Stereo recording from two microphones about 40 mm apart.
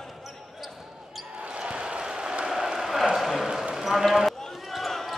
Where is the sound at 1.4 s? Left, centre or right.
Right; by 3.4 s centre.